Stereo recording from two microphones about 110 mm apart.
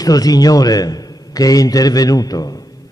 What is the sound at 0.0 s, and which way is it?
A man's voice, 35° left (ahead or behind).